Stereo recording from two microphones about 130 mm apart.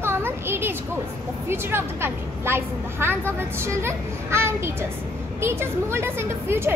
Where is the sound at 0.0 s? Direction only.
15° right (ahead or behind).